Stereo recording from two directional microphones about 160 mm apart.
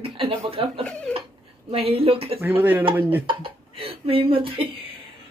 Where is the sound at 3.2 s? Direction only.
35° right (ahead or behind).